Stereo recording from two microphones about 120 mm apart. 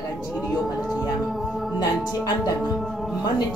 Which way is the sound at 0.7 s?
5° right (ahead or behind).